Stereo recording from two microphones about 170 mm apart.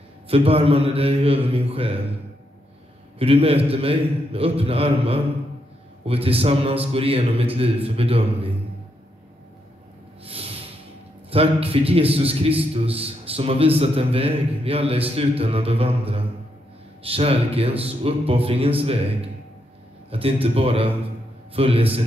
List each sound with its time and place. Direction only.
0.3 s a man's voice: 35° right (ahead or behind)
3.2 s a man's voice: 35° right (ahead or behind)
10.2 s snort: 35° right (ahead or behind)
11.2 s a man's voice: 35° right (ahead or behind)